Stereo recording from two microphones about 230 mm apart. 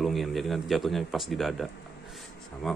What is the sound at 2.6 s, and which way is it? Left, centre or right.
Speech, centre.